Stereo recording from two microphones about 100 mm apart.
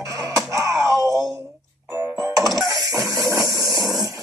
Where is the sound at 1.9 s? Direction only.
25° right (ahead or behind).